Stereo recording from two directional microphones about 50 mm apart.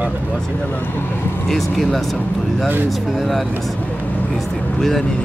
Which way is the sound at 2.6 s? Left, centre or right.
Right.